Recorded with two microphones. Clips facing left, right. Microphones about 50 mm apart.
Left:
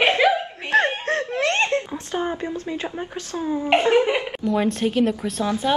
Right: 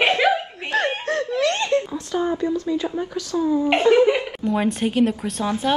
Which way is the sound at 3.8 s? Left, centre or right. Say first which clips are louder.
Right 4 dB; left.